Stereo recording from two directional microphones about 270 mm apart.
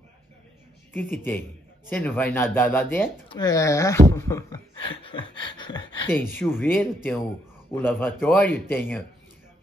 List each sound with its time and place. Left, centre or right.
0.9 s speech: centre
5.0 s a sound: centre
6.4 s speech: centre